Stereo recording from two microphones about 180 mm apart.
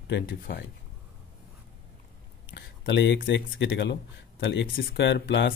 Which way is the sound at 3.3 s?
80° left.